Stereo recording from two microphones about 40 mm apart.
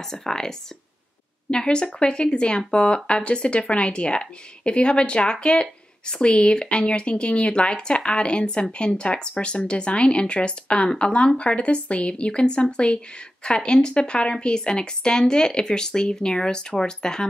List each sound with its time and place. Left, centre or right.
0.0 s speech: centre